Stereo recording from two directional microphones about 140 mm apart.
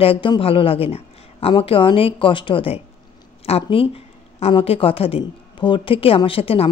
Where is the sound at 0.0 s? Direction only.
40° left (ahead or behind).